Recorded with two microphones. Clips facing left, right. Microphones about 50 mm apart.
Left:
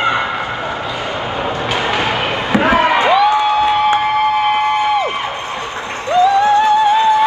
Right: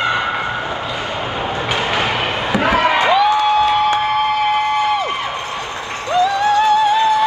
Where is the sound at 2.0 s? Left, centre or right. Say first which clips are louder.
Left 1 dB; left.